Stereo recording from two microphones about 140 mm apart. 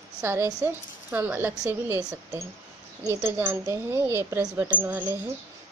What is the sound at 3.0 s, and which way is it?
Speech, 15° right (ahead or behind).